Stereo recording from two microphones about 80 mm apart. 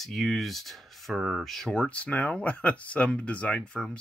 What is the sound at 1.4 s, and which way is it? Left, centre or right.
Speech, centre.